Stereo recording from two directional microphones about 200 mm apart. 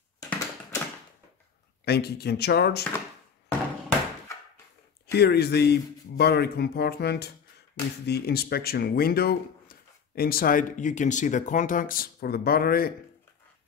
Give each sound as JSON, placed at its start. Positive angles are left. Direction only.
{"t": 0.2, "sound": "a sound", "side_deg": 15}
{"t": 1.9, "sound": "speech", "side_deg": 55}
{"t": 5.1, "sound": "speech", "side_deg": 55}